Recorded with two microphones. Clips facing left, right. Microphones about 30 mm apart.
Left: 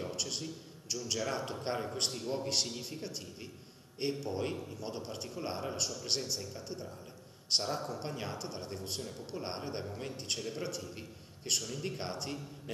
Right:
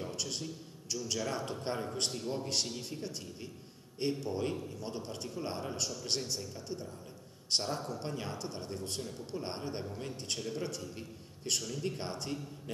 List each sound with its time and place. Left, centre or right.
0.0 s a man's voice: centre